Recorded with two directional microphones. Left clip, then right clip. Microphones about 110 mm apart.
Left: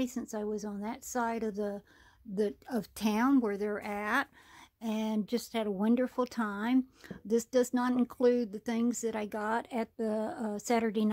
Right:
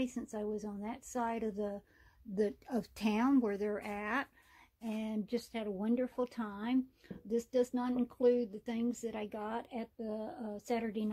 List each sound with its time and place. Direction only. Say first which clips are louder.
0.0 s a woman's voice: left 3 dB; 25° left (ahead or behind)
4.8 s speech: left 6 dB; 35° left (ahead or behind)